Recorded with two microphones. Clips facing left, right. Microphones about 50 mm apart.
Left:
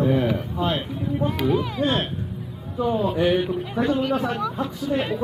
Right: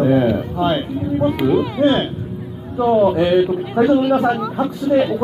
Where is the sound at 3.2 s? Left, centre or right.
Centre.